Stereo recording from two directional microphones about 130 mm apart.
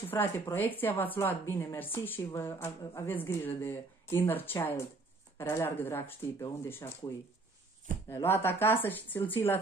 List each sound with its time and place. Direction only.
0.1 s a woman's voice: 15° left (ahead or behind)
8.1 s a woman's voice: 20° left (ahead or behind)